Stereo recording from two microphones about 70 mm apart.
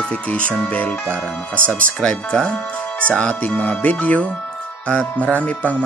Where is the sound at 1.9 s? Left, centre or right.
Centre.